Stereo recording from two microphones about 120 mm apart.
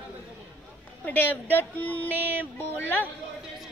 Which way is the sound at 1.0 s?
15° left (ahead or behind).